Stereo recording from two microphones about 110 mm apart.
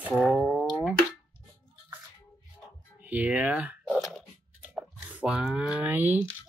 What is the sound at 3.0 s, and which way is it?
Speech, 15° right (ahead or behind).